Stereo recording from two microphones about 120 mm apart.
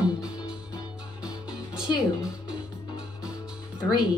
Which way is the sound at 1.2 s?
5° right (ahead or behind).